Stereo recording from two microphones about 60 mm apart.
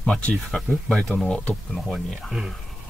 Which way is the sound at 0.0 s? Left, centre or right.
Centre.